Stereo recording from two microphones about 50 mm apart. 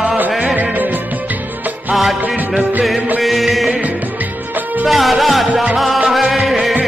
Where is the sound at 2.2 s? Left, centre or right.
Right.